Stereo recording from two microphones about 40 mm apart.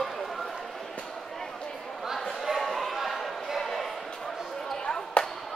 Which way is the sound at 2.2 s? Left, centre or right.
Centre.